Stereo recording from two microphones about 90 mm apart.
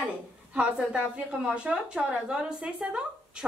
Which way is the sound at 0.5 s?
10° right (ahead or behind).